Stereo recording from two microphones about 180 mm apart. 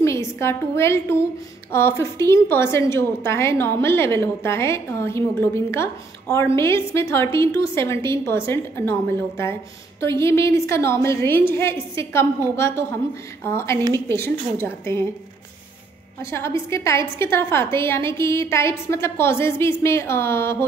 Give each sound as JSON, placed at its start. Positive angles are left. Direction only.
{"t": 0.0, "sound": "a woman's voice", "side_deg": 15}
{"t": 16.2, "sound": "a woman's voice", "side_deg": 15}